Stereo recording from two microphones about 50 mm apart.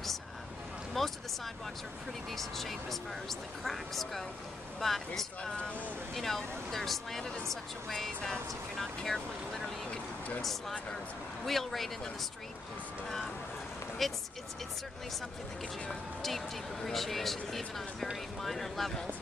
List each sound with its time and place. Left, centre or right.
0.9 s speech: centre
5.4 s speech: left
6.1 s speech: centre
11.4 s speech: centre
14.0 s speech: centre
15.9 s speech: centre